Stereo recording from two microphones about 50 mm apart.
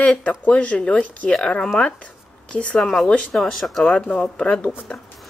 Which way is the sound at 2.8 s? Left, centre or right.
Centre.